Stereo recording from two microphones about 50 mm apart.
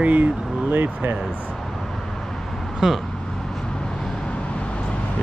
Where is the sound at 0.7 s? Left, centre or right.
Right.